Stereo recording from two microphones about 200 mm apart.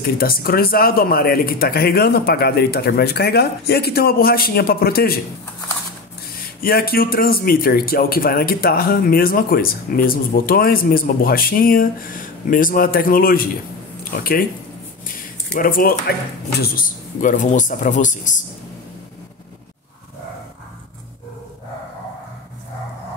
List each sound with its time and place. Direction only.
0.0 s a man's voice: 50° left (ahead or behind)
6.6 s a man's voice: 50° left (ahead or behind)
15.6 s a man's voice: 45° left (ahead or behind)